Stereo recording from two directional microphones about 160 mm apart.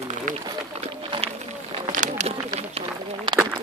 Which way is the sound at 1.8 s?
50° right (ahead or behind).